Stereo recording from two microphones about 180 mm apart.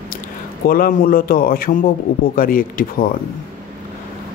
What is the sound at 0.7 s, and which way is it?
Speech, 50° left (ahead or behind).